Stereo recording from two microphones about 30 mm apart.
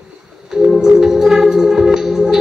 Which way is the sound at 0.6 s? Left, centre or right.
Right.